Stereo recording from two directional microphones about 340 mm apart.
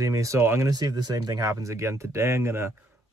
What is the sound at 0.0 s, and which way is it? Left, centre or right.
Speech, centre.